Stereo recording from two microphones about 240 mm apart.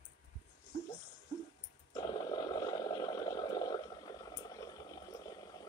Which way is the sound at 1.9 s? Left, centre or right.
Centre.